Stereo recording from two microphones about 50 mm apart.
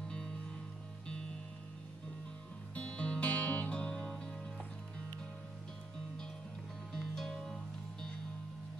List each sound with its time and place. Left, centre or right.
2.7 s music: left
6.9 s music: centre